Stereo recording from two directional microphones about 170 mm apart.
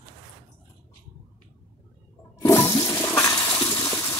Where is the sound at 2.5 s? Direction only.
15° left (ahead or behind).